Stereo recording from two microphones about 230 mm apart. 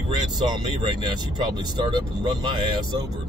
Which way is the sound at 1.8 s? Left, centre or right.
Centre.